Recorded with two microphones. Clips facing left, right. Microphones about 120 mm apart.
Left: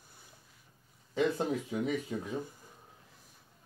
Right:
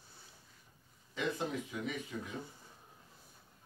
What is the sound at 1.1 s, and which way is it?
Speech, 40° left (ahead or behind).